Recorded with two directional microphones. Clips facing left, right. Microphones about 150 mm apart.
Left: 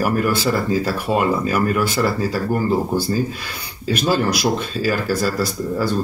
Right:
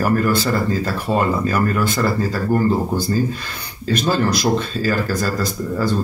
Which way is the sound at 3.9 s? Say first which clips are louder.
Even; 10° left (ahead or behind).